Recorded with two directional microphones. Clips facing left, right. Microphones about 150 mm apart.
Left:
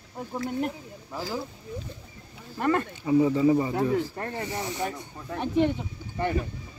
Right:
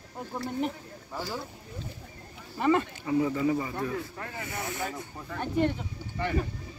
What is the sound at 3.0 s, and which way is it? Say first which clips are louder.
Speech: left 7 dB; 20° left (ahead or behind).